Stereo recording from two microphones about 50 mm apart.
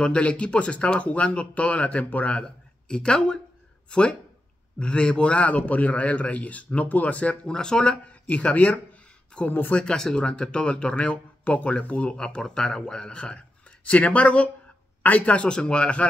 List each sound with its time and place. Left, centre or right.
0.0 s speech: left
2.3 s speech: centre
7.5 s speech: centre
9.8 s speech: centre